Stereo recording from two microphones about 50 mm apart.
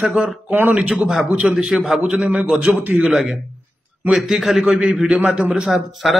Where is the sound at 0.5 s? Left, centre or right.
Right.